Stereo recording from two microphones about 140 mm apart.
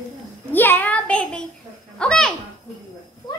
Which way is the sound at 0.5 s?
15° left (ahead or behind).